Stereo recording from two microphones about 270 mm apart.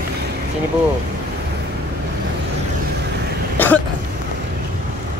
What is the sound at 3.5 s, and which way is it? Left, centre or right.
Throat clearing, centre.